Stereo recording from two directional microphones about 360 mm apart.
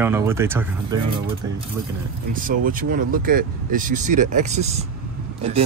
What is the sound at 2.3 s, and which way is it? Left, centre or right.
Speech, right.